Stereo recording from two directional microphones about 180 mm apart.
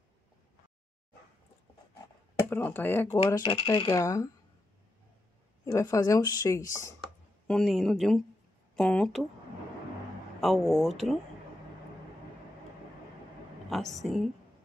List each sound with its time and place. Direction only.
2.5 s speech: 10° left (ahead or behind)
3.4 s speech: 25° left (ahead or behind)
5.7 s speech: 20° left (ahead or behind)
7.4 s speech: centre (ahead or behind)
10.4 s speech: centre (ahead or behind)
13.7 s speech: centre (ahead or behind)